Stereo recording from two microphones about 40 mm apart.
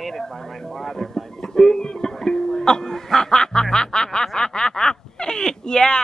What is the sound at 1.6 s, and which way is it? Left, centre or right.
Speech, centre.